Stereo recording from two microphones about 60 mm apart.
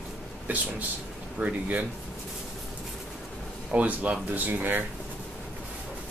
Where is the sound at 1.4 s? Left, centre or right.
Right.